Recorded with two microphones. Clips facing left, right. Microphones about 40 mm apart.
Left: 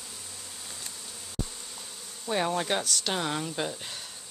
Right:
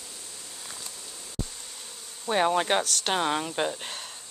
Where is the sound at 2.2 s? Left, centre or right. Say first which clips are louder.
Right 4 dB; right.